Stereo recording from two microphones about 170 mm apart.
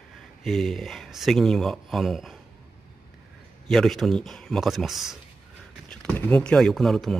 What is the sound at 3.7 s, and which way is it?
Speech, centre (ahead or behind).